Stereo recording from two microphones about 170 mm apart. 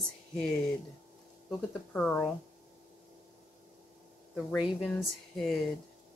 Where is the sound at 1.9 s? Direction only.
10° left (ahead or behind).